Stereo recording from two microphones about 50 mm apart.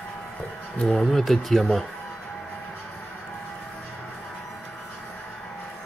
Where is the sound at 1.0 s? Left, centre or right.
Centre.